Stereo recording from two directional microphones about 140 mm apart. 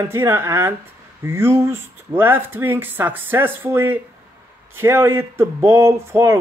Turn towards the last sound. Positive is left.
turn(degrees=-20)  # may be behind; listen again after turning